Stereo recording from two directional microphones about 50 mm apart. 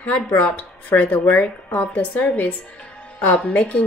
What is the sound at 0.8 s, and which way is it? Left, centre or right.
Speech, left.